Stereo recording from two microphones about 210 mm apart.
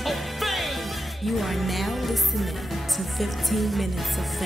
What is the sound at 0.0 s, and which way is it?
Music, centre (ahead or behind).